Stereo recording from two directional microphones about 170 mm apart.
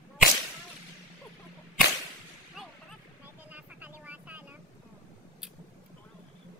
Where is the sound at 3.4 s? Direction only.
10° right (ahead or behind).